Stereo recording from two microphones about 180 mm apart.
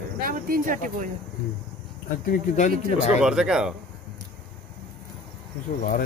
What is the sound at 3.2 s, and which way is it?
Speech, 5° right (ahead or behind).